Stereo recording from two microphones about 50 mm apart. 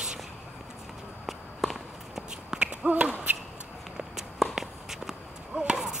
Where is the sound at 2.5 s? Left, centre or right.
Centre.